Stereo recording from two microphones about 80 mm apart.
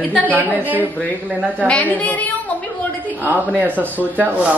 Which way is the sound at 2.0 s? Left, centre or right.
Centre.